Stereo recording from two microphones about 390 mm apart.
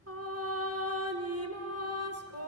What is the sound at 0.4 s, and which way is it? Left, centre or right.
Music, right.